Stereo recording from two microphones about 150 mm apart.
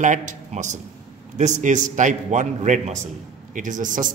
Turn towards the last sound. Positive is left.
turn(degrees=-60)  # may be behind; listen again after turning